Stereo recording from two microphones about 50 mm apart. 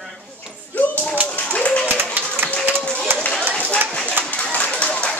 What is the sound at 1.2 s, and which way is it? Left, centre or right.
Clapping, left.